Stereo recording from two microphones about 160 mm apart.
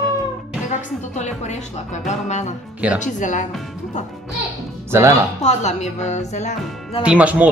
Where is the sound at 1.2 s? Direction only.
45° left (ahead or behind).